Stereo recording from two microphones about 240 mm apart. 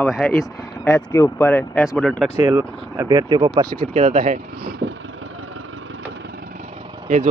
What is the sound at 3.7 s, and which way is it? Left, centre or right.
Speech, right.